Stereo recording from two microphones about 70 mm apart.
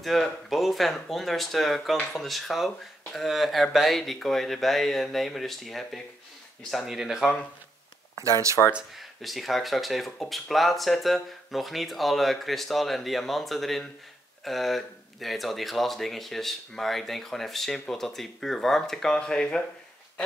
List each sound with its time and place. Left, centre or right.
0.0 s speech: centre
8.2 s speech: right
8.9 s speech: centre